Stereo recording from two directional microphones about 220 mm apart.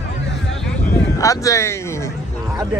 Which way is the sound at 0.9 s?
15° left (ahead or behind).